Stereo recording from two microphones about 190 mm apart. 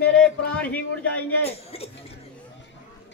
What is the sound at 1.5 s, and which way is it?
Speech, 30° left (ahead or behind).